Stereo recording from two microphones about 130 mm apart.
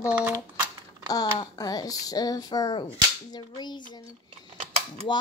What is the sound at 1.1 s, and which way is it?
Speech, 30° left (ahead or behind).